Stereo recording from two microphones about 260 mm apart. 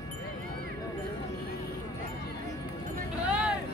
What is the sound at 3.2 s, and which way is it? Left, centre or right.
Vehicle, centre.